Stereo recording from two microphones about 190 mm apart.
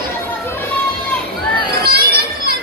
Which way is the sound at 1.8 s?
55° right (ahead or behind).